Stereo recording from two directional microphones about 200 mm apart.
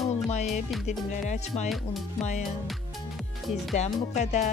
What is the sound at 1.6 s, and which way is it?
Speech, centre (ahead or behind).